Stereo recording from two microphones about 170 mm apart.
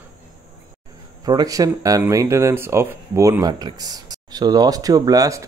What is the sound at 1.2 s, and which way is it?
Speech, 20° right (ahead or behind).